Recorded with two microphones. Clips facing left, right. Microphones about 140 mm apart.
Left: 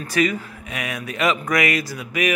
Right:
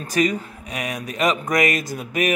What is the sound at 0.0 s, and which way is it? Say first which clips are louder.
A man's voice: even; 40° right (ahead or behind).